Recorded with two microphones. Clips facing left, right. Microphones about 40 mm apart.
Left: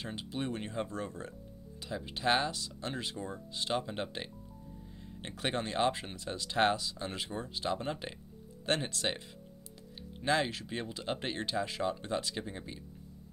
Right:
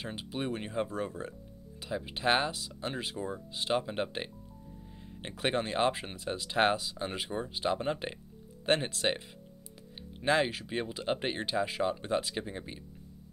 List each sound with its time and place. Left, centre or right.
0.0 s speech: centre
10.2 s speech: centre